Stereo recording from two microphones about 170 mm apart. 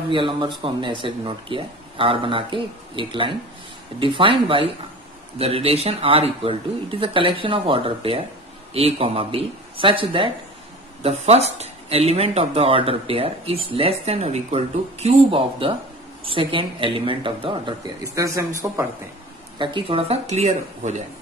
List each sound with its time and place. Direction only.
0.1 s speech: 30° right (ahead or behind)
18.0 s speech: 20° right (ahead or behind)
19.6 s speech: 30° right (ahead or behind)